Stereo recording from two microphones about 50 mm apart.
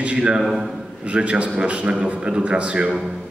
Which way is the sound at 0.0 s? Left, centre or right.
Right.